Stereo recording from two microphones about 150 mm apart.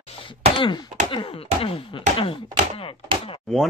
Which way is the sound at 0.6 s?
30° left (ahead or behind).